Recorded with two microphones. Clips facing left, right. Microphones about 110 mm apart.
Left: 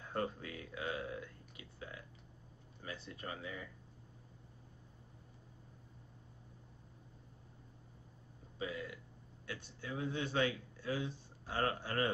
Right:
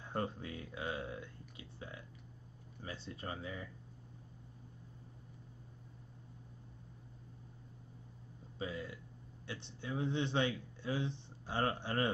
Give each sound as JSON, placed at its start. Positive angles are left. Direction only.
{"t": 0.0, "sound": "a man's voice", "side_deg": -25}
{"t": 1.6, "sound": "a sound", "side_deg": -25}
{"t": 2.8, "sound": "a man's voice", "side_deg": -30}
{"t": 8.5, "sound": "a man's voice", "side_deg": -30}